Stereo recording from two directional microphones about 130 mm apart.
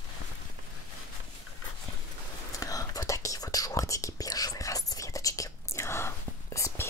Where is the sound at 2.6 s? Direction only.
25° left (ahead or behind).